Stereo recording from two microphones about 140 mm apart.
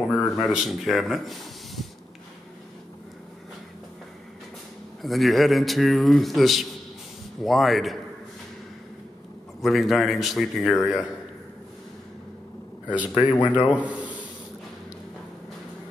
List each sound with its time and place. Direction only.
0.1 s a sound: 10° left (ahead or behind)
0.5 s a man's voice: centre (ahead or behind)
5.0 s a man's voice: centre (ahead or behind)
9.6 s a man's voice: centre (ahead or behind)
12.8 s a man's voice: 10° right (ahead or behind)